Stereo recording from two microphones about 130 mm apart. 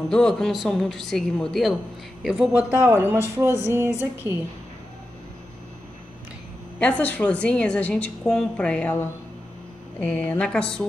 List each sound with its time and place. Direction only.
0.1 s speech: 5° left (ahead or behind)
2.5 s speech: 15° right (ahead or behind)
6.8 s a woman's voice: 10° left (ahead or behind)